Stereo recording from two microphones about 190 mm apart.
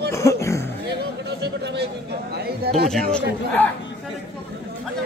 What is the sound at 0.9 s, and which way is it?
Chatter, 60° right (ahead or behind).